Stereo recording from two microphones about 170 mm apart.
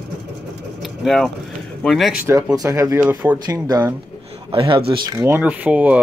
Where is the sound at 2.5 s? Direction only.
20° right (ahead or behind).